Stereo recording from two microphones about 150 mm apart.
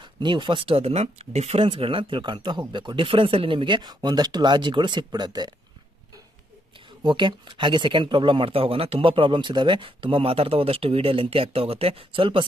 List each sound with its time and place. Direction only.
0.0 s speech: 30° right (ahead or behind)
7.0 s speech: 35° right (ahead or behind)